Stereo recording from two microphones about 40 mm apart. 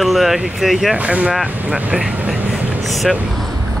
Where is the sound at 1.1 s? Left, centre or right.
Right.